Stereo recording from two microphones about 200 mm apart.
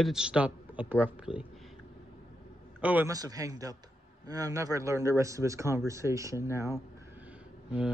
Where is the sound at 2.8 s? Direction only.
10° right (ahead or behind).